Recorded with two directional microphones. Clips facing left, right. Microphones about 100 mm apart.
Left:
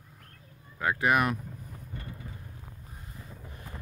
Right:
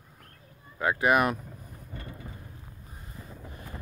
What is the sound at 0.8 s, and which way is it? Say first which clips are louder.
Speech: right 2 dB; 10° right (ahead or behind).